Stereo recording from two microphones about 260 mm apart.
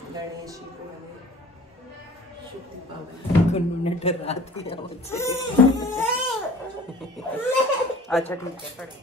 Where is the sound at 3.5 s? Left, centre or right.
Left.